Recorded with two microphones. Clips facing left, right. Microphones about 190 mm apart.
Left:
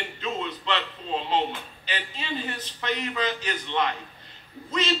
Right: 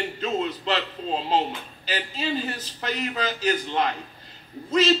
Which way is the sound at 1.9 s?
40° right (ahead or behind).